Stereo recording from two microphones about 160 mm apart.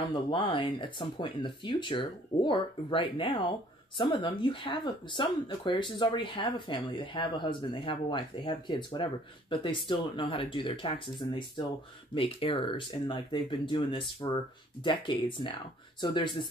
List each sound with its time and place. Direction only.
0.1 s speech: 30° left (ahead or behind)